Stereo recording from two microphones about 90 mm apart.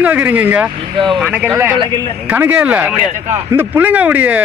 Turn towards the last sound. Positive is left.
turn(degrees=-15)  # may be behind; listen again after turning